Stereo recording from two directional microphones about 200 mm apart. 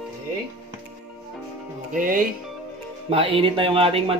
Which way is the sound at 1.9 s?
45° right (ahead or behind).